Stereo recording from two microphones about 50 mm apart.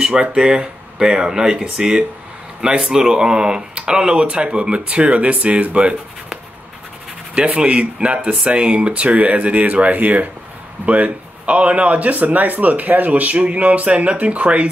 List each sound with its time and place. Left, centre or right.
0.0 s speech: centre
7.3 s speech: right